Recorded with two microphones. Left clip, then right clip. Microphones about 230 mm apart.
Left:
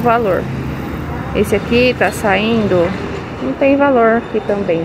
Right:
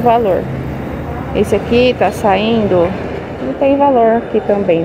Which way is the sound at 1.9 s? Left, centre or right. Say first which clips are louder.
Right 2 dB; centre.